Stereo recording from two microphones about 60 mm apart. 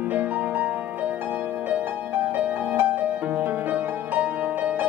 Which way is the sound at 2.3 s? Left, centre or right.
Right.